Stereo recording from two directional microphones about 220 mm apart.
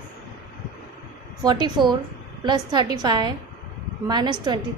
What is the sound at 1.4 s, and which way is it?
A woman's voice, 20° right (ahead or behind).